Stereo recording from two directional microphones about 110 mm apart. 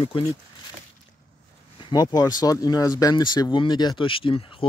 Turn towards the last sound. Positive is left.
turn(degrees=55)  # may be behind; listen again after turning